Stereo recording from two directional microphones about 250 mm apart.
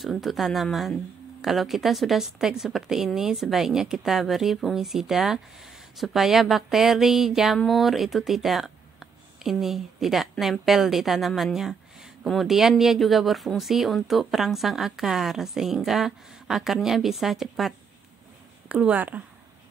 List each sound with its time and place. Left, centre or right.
0.0 s speech: centre